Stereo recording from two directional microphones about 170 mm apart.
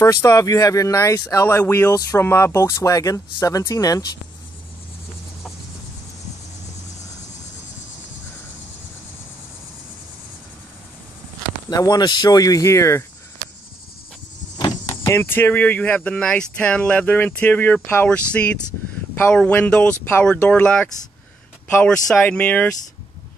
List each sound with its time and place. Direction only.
0.0 s speech: 20° left (ahead or behind)
11.7 s speech: 20° left (ahead or behind)
14.6 s speech: 25° left (ahead or behind)